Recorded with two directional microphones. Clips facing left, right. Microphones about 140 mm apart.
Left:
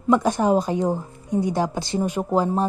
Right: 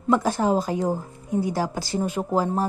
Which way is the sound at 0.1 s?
20° left (ahead or behind).